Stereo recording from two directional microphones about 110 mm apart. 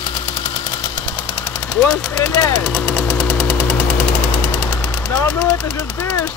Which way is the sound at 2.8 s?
20° left (ahead or behind).